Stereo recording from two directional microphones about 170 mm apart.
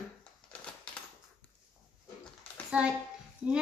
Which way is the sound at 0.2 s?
5° left (ahead or behind).